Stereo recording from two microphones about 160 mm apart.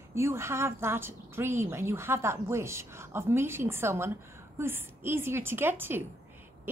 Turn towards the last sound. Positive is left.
turn(degrees=-15)  # may be behind; listen again after turning